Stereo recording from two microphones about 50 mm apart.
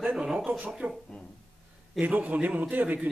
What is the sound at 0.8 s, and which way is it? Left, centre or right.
Speech, right.